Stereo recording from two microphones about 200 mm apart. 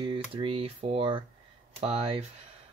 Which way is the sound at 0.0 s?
25° right (ahead or behind).